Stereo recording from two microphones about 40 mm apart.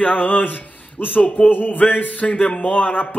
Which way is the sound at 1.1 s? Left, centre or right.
Left.